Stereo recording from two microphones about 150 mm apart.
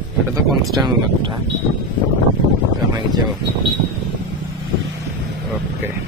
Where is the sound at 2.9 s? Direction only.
30° right (ahead or behind).